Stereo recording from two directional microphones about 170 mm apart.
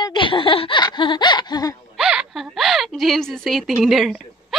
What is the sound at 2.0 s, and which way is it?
Speech, 5° right (ahead or behind).